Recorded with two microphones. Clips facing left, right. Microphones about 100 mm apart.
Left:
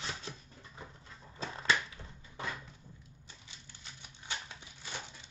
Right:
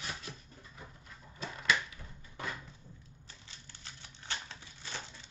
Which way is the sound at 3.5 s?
15° left (ahead or behind).